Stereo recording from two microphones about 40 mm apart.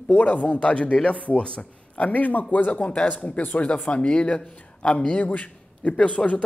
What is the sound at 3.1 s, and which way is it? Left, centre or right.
Speech, left.